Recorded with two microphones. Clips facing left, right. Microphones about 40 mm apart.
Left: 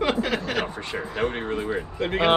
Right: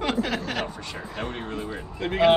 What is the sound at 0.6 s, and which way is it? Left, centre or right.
Speech, left.